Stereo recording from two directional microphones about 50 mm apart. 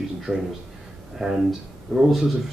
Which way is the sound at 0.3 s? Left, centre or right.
Right.